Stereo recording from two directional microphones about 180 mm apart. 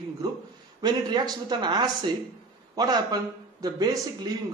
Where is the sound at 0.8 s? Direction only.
20° right (ahead or behind).